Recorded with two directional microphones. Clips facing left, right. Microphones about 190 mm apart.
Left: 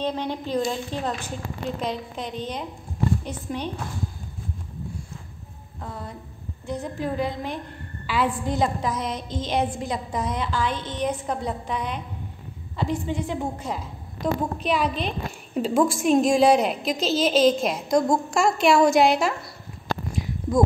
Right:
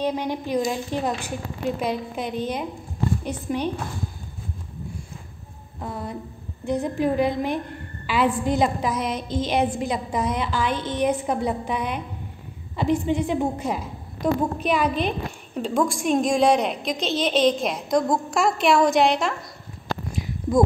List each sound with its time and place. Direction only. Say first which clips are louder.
0.0 s a woman's voice: right 2 dB; 10° right (ahead or behind)
5.8 s a woman's voice: right 5 dB; 15° right (ahead or behind)
14.2 s a woman's voice: right 3 dB; centre (ahead or behind)